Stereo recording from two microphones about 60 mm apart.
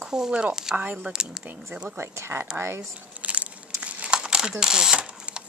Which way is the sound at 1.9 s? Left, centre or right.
Right.